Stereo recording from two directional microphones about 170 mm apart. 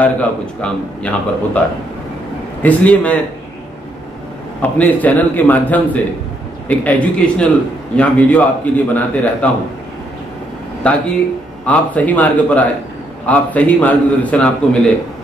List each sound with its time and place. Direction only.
0.6 s a man's voice: 5° left (ahead or behind)
2.6 s a man's voice: 10° left (ahead or behind)
4.6 s a man's voice: 10° left (ahead or behind)
10.8 s a man's voice: 10° left (ahead or behind)